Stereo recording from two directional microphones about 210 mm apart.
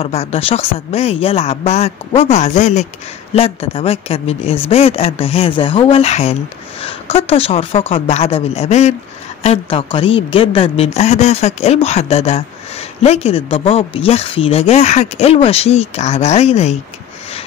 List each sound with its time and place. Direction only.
0.0 s speech: 30° left (ahead or behind)